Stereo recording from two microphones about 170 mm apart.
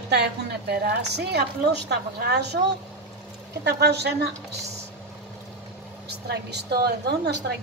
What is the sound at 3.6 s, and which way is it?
Speech, 80° right.